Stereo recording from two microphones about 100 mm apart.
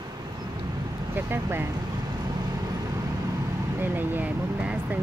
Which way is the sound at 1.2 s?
20° right (ahead or behind).